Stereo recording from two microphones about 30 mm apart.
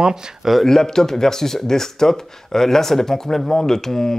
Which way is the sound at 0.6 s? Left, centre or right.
Centre.